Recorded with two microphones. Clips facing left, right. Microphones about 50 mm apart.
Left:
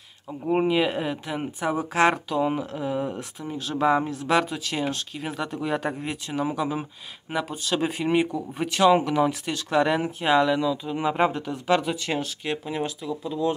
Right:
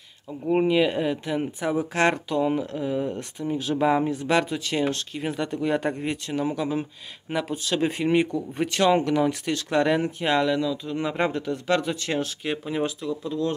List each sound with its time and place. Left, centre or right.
0.5 s speech: centre
3.5 s speech: centre